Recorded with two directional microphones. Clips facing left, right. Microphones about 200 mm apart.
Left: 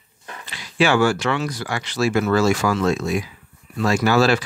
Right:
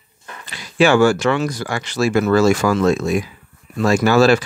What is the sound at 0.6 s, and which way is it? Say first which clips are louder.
Speech: right 4 dB; 45° right (ahead or behind).